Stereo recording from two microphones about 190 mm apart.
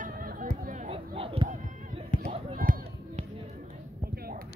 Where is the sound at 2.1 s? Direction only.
45° left (ahead or behind).